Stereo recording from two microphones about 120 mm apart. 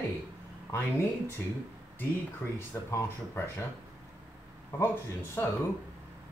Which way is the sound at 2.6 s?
20° left (ahead or behind).